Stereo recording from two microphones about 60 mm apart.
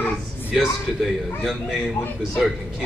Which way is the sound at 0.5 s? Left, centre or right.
Centre.